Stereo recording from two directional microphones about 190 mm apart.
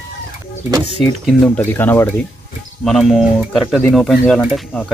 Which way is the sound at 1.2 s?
5° left (ahead or behind).